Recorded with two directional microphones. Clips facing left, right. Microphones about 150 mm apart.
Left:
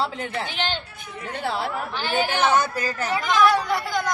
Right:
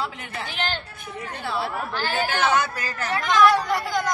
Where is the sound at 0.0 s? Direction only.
30° left (ahead or behind).